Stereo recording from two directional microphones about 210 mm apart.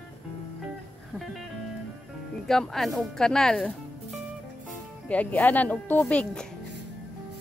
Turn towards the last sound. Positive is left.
turn(degrees=5)  # may be behind; listen again after turning